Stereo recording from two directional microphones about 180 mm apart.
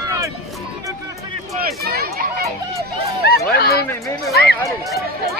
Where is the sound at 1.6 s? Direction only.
60° right (ahead or behind).